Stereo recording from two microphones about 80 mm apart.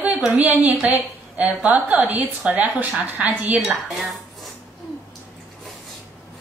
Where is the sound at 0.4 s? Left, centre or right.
Centre.